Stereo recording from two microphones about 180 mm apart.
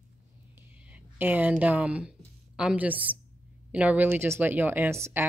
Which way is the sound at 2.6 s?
5° right (ahead or behind).